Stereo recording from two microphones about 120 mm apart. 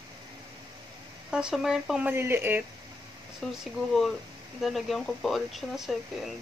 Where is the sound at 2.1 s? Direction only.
20° right (ahead or behind).